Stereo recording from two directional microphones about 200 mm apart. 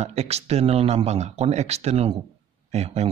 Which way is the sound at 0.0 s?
30° right (ahead or behind).